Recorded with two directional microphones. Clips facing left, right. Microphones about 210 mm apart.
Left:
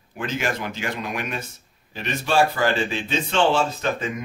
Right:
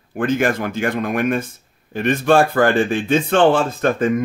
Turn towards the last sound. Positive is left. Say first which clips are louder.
# right 9 dB
turn(degrees=-50)  # may be behind; listen again after turning